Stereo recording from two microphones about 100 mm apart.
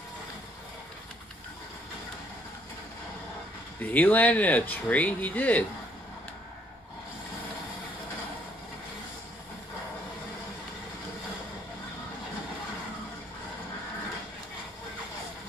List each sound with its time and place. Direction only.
3.8 s speech: 15° left (ahead or behind)